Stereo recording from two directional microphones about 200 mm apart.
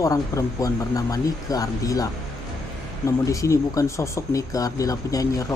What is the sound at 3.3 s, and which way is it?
Speech, 15° left (ahead or behind).